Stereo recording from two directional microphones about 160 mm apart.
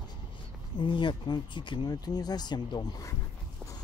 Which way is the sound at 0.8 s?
30° left (ahead or behind).